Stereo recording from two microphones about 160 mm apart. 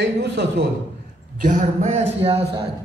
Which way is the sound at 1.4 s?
50° right (ahead or behind).